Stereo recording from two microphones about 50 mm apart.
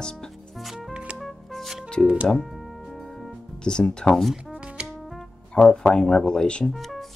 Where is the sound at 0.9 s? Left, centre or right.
Right.